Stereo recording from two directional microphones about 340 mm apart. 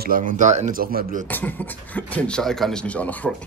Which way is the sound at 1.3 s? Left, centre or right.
Centre.